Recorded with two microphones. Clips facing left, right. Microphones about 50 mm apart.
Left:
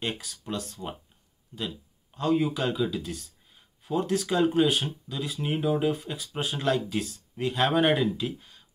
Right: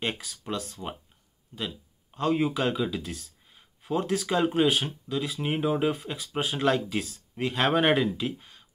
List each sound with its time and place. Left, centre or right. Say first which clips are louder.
0.6 s speech: even; right